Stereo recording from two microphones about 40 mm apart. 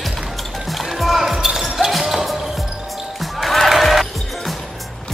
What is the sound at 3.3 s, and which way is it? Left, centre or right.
Music, centre.